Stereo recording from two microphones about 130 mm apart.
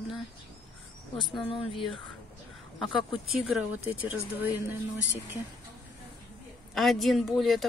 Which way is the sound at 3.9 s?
15° right (ahead or behind).